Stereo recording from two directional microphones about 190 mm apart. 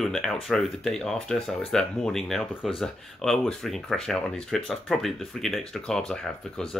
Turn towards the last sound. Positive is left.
turn(degrees=5)  # may be behind; listen again after turning